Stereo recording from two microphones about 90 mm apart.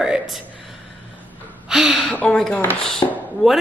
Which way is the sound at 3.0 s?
45° left (ahead or behind).